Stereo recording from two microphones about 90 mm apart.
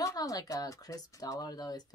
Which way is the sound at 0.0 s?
40° left (ahead or behind).